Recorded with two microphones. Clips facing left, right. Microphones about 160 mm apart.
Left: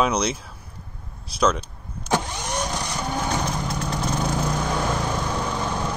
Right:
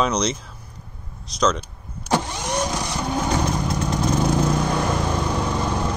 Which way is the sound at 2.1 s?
5° right (ahead or behind).